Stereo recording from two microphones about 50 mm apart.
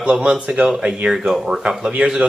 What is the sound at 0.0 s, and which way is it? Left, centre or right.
Speech, right.